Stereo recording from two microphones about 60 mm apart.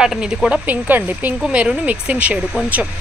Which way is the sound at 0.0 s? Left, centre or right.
Centre.